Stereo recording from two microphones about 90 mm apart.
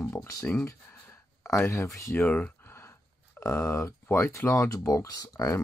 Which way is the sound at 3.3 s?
30° left (ahead or behind).